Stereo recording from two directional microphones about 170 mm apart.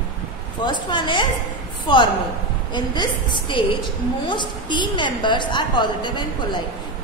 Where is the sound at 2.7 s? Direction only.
25° left (ahead or behind).